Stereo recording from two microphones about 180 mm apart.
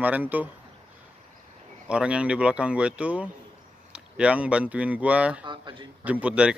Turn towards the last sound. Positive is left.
turn(degrees=-5)  # may be behind; listen again after turning